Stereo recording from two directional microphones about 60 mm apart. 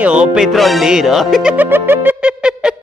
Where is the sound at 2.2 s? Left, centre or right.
Centre.